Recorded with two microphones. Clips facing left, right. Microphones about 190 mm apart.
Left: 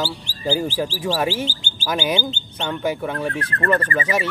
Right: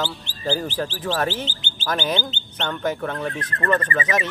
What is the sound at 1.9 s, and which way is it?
Speech, 10° left (ahead or behind).